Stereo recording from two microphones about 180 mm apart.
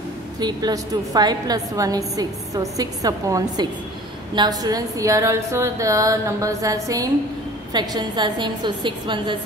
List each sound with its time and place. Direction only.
0.4 s a woman's voice: 20° right (ahead or behind)